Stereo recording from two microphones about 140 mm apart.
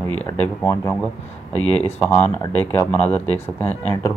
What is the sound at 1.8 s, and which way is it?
Speech, 50° left (ahead or behind).